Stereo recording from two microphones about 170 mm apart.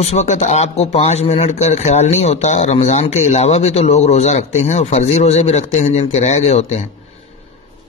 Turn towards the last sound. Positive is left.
turn(degrees=40)  # may be behind; listen again after turning